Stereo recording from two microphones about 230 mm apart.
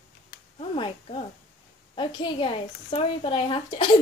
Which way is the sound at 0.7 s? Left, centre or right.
Left.